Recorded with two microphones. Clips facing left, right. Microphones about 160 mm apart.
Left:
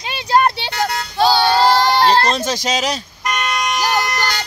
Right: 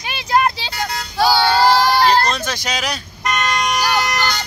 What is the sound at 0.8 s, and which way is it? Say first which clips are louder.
Child singing: left 1 dB; 20° left (ahead or behind).